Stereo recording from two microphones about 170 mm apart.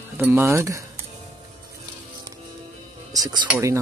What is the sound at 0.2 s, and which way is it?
Speech, 15° right (ahead or behind).